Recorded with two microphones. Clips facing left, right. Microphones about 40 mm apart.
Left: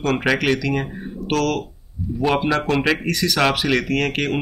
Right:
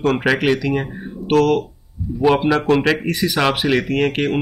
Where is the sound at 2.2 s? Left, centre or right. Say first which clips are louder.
Right 4 dB; centre.